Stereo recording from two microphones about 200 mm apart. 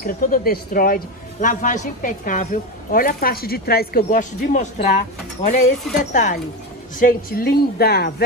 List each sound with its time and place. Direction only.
0.0 s speech: 45° left (ahead or behind)